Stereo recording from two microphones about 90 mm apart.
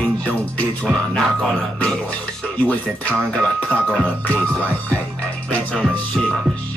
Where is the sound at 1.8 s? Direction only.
15° left (ahead or behind).